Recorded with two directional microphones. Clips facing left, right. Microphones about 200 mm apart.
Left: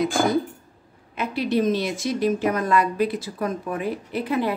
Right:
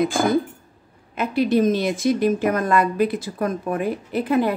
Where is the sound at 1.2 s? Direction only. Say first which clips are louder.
Right 4 dB; 50° right (ahead or behind).